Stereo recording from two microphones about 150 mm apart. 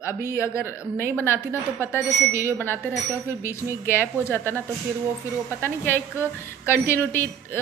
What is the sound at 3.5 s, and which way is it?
A woman's voice, 15° left (ahead or behind).